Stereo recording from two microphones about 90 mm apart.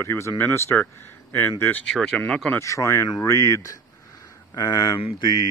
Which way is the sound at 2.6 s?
35° left (ahead or behind).